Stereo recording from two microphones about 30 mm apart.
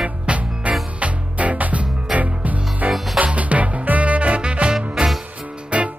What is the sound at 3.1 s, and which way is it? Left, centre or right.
Music, right.